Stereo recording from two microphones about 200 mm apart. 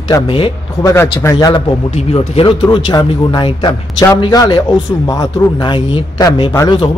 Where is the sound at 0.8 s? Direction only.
10° left (ahead or behind).